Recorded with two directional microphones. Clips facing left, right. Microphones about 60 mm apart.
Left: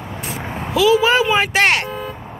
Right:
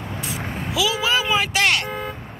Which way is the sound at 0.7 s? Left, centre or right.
Left.